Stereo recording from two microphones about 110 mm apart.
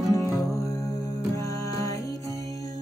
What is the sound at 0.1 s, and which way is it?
Music, 25° left (ahead or behind).